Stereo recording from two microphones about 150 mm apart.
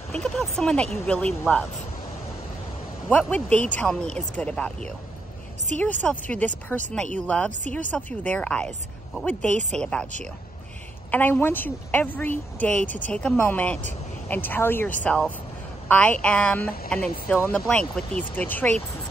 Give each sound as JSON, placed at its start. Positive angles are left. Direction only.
{"t": 0.1, "sound": "speech", "side_deg": 5}
{"t": 3.1, "sound": "speech", "side_deg": 10}
{"t": 11.1, "sound": "speech", "side_deg": 10}
{"t": 16.6, "sound": "speech", "side_deg": 80}
{"t": 16.9, "sound": "speech", "side_deg": 10}